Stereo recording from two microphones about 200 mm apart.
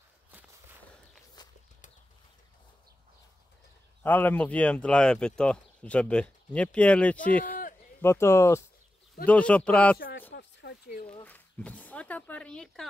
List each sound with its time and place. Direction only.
0.3 s walk: 10° right (ahead or behind)
4.0 s speech: 10° left (ahead or behind)
9.9 s speech: 50° left (ahead or behind)
10.3 s a sound: 60° left (ahead or behind)
11.2 s speech: 5° left (ahead or behind)